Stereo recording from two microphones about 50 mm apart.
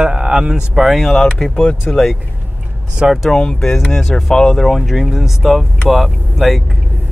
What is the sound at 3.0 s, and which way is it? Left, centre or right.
Speech, right.